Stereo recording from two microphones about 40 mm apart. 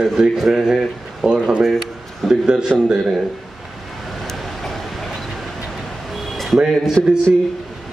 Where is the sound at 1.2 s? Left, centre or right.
Right.